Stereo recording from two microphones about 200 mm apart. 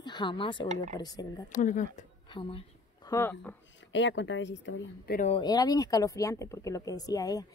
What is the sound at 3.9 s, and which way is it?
Speech, 65° left (ahead or behind).